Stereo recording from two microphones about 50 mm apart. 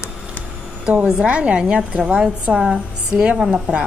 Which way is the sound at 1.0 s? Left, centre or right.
Centre.